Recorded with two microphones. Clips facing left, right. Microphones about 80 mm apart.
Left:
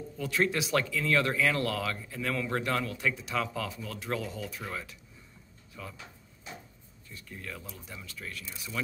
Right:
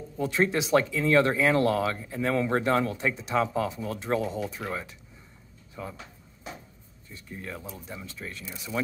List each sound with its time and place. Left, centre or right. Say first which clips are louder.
0.2 s speech: right 4 dB; right
7.1 s speech: right 4 dB; right